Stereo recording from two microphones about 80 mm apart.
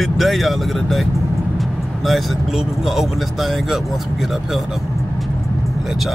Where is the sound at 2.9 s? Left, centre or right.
Centre.